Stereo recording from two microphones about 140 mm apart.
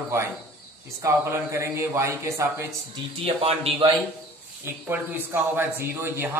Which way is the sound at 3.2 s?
45° right (ahead or behind).